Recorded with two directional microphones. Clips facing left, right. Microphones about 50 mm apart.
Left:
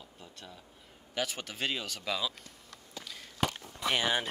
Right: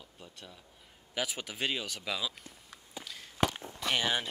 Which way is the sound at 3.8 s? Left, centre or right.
Centre.